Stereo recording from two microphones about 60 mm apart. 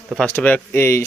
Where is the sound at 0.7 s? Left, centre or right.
Left.